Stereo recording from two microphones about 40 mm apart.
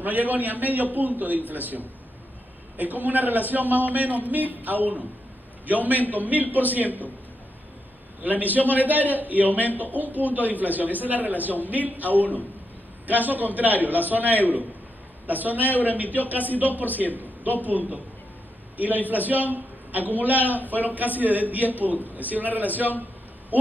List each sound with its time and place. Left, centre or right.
0.0 s a man's voice: right
8.2 s a man's voice: right